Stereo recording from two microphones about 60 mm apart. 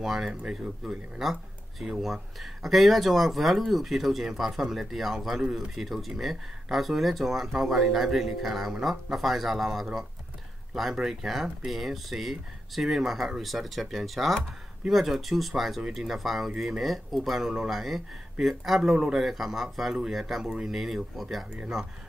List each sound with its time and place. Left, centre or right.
0.0 s speech: centre
0.3 s speech: centre
0.8 s speech: centre